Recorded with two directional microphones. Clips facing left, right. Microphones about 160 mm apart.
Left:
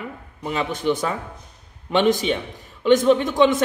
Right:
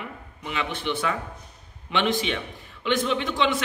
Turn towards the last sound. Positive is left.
turn(degrees=45)  # may be behind; listen again after turning